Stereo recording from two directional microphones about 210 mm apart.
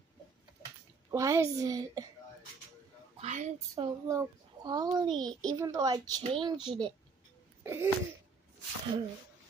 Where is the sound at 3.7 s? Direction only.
15° right (ahead or behind).